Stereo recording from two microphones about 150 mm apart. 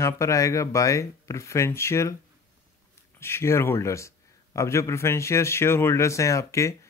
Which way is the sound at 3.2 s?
15° left (ahead or behind).